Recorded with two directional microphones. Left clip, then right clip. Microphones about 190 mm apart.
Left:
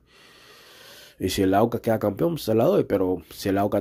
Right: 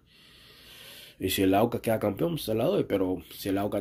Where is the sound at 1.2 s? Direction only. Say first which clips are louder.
Left 3 dB; 30° left (ahead or behind).